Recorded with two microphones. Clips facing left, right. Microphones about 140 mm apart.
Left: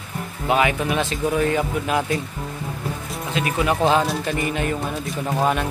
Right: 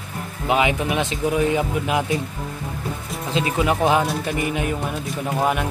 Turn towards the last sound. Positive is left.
turn(degrees=-10)  # may be behind; listen again after turning